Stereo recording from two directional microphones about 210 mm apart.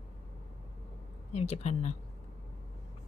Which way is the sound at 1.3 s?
30° left (ahead or behind).